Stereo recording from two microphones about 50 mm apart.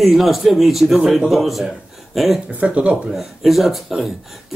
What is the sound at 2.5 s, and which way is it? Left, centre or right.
Speech, right.